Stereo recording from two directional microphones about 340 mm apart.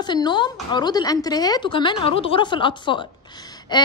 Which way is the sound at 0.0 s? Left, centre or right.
Centre.